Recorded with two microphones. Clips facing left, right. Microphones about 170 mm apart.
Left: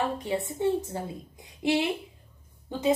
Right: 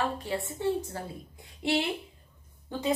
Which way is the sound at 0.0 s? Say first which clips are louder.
Left 2 dB; 20° left (ahead or behind).